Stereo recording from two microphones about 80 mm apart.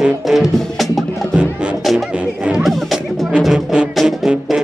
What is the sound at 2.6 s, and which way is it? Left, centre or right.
Music, centre.